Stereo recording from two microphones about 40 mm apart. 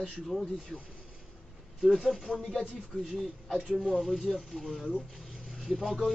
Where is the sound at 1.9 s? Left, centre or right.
Centre.